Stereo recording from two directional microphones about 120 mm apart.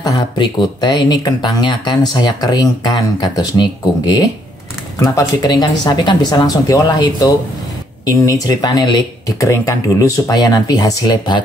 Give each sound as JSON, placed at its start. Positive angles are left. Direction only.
{"t": 0.0, "sound": "speech", "side_deg": 35}
{"t": 4.9, "sound": "speech", "side_deg": 30}